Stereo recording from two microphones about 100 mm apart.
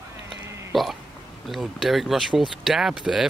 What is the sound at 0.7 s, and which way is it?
Hiccup, centre (ahead or behind).